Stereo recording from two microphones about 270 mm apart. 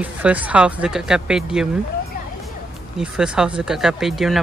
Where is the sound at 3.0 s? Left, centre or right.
Centre.